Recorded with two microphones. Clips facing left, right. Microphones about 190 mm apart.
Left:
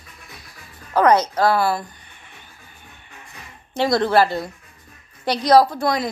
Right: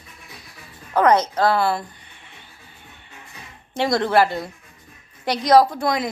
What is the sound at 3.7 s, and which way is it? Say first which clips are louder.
A woman's voice: left 1 dB; 20° right (ahead or behind).